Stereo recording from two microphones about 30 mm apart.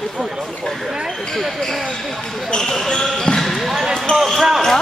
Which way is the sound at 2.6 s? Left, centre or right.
Centre.